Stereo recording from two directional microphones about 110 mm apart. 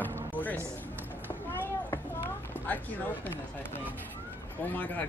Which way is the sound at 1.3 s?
20° left (ahead or behind).